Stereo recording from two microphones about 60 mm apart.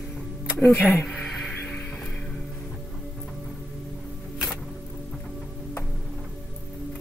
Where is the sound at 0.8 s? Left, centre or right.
Left.